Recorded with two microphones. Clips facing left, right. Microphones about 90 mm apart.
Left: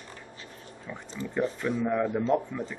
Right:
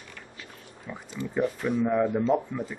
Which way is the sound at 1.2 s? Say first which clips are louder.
Right 2 dB; 35° left (ahead or behind).